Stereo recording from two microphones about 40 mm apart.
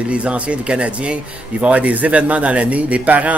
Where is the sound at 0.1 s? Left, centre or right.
Right.